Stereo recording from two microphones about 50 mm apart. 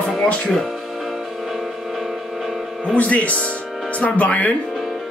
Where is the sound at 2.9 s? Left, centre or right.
Left.